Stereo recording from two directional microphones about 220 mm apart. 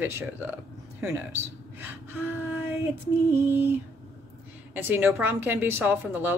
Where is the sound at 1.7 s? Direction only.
10° right (ahead or behind).